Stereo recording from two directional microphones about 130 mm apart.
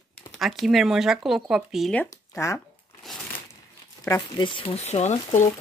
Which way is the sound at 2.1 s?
20° left (ahead or behind).